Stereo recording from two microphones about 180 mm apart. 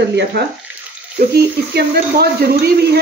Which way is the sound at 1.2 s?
55° right (ahead or behind).